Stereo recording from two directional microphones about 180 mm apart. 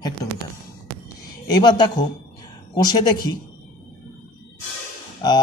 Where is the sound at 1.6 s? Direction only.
25° left (ahead or behind).